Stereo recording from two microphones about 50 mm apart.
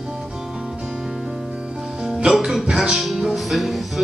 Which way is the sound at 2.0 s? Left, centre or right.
Centre.